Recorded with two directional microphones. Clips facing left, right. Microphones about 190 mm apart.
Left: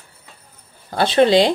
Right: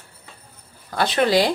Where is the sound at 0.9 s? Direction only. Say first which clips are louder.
Left 5 dB; 30° left (ahead or behind).